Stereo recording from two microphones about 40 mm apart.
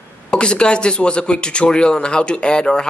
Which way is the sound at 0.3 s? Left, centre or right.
Left.